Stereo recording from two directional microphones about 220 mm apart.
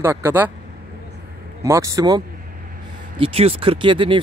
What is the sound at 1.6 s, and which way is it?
Speech, 15° right (ahead or behind).